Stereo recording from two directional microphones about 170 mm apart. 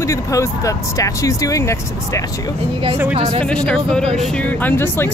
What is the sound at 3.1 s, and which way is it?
Speech, 40° right (ahead or behind).